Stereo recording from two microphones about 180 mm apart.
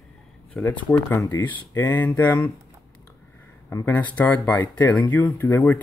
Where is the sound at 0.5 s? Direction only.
10° left (ahead or behind).